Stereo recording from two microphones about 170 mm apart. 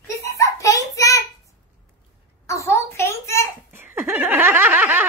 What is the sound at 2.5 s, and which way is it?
A child's voice, 15° left (ahead or behind).